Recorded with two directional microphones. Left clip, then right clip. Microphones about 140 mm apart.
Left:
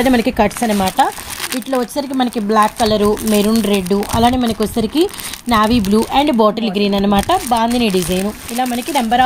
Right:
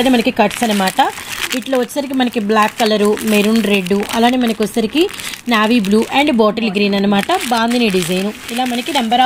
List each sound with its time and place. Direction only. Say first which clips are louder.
0.0 s speech: right 1 dB; centre (ahead or behind)